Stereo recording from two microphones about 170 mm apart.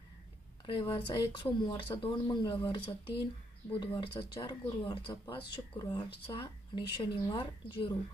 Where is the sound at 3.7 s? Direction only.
25° left (ahead or behind).